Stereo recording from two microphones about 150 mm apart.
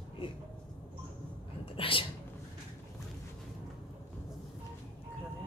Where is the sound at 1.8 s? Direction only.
35° left (ahead or behind).